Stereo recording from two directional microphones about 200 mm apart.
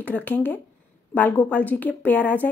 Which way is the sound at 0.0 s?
10° left (ahead or behind).